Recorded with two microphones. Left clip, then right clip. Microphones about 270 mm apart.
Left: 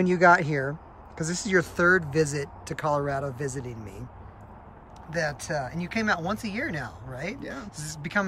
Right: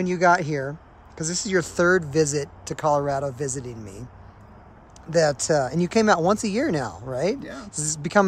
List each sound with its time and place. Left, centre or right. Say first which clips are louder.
0.0 s speech: even; centre
5.1 s speech: right 9 dB; centre